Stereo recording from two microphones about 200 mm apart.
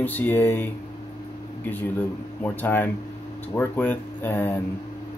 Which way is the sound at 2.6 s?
10° left (ahead or behind).